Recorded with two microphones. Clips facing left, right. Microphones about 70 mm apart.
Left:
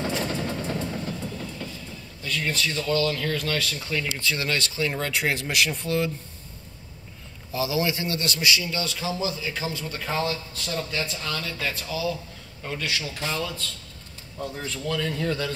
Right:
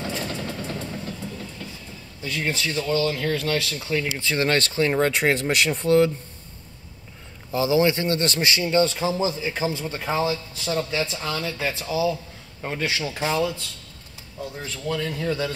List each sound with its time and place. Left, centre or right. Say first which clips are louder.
0.0 s vehicle: left 2 dB; centre
2.2 s speech: right 1 dB; right; by 4.0 s centre
4.2 s speech: right 4 dB; right
4.5 s a man's voice: right 5 dB; right
7.5 s a man's voice: right 6 dB; right
10.0 s speech: right 3 dB; centre
11.1 s speech: right 3 dB; centre
12.6 s speech: right 4 dB; right
14.4 s speech: even; centre